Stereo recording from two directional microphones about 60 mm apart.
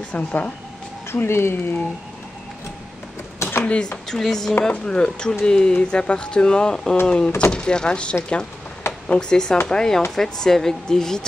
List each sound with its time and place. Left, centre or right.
0.1 s speech: left
1.1 s speech: left
3.6 s speech: centre
8.8 s a sound: left
9.3 s speech: centre